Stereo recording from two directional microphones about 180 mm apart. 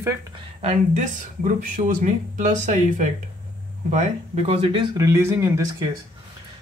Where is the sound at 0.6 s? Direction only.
40° right (ahead or behind).